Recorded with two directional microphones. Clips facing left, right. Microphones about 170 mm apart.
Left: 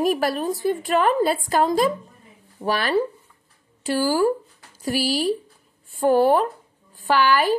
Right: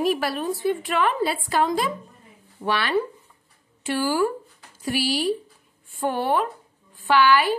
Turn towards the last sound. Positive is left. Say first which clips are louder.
# even
turn(degrees=40)  # may be behind; listen again after turning